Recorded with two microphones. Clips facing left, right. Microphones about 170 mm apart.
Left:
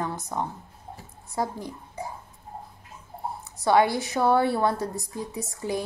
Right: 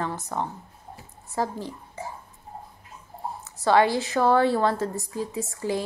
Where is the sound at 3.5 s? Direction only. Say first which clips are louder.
Right 1 dB; 15° left (ahead or behind).